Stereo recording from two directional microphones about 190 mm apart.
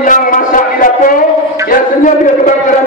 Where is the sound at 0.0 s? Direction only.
45° left (ahead or behind).